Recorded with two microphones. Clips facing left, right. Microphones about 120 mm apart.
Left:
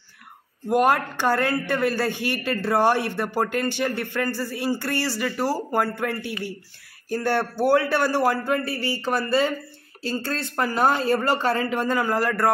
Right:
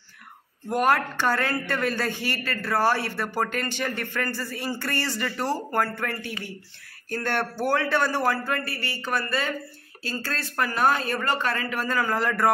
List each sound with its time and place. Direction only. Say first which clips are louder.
0.7 s a man's voice: left 3 dB; 15° left (ahead or behind)
8.7 s speech: left 4 dB; 30° left (ahead or behind); by 12.4 s 5° left (ahead or behind)